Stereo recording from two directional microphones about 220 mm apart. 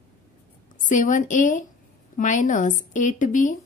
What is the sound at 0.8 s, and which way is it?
A woman's voice, 35° left (ahead or behind).